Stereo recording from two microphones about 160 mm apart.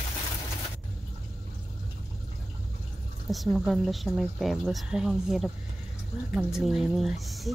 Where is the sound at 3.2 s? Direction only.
Centre (ahead or behind).